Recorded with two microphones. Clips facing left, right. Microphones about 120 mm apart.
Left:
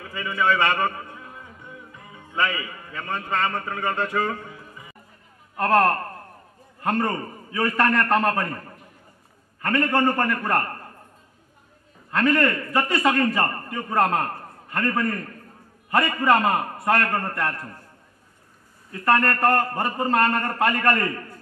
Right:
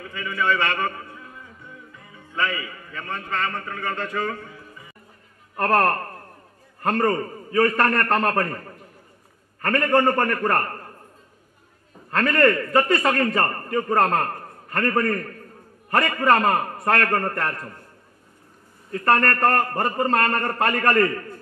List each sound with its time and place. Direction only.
0.0 s a man's voice: 20° left (ahead or behind)
5.6 s a man's voice: 55° right (ahead or behind)
9.6 s a man's voice: 60° right (ahead or behind)
12.2 s a man's voice: 55° right (ahead or behind)
18.9 s a man's voice: 55° right (ahead or behind)